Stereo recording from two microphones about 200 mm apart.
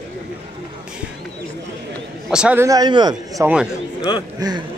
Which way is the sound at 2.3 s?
5° right (ahead or behind).